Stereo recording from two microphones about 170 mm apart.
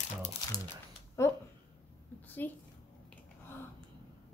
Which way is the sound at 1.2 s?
15° left (ahead or behind).